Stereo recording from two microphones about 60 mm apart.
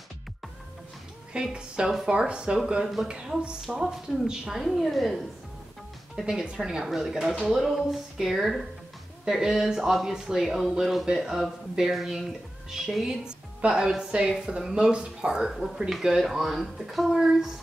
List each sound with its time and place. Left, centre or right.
1.3 s speech: centre
6.1 s speech: centre